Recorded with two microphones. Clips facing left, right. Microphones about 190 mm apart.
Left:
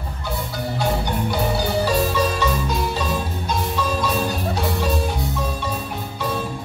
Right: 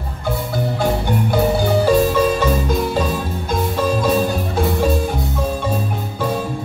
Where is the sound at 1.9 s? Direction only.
50° right (ahead or behind).